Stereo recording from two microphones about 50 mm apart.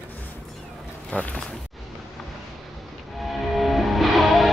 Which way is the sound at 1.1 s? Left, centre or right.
Left.